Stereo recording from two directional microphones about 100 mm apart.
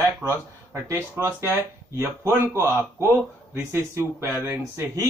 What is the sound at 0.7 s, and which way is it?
Speech, 25° right (ahead or behind).